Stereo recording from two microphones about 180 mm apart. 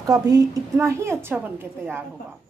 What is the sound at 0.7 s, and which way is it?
Speech, 15° right (ahead or behind).